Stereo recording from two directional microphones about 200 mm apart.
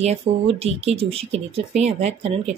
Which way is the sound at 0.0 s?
30° right (ahead or behind).